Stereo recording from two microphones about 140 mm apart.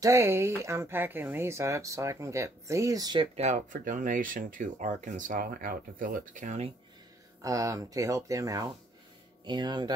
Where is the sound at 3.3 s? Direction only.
55° right (ahead or behind).